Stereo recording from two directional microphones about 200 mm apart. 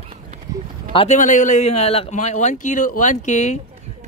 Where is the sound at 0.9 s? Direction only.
35° left (ahead or behind).